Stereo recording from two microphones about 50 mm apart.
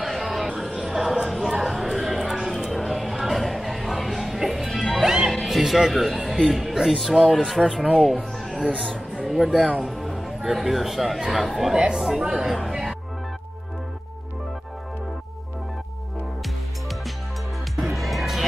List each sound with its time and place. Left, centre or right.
0.0 s music: centre
0.8 s a sound: centre
4.6 s music: centre
5.0 s music: centre
6.5 s speech: centre
7.7 s speech: centre
8.6 s speech: centre
9.1 s a sound: centre
9.8 s speech: centre
11.1 s speech: centre
11.4 s speech: centre
11.7 s speech: centre
17.8 s music: centre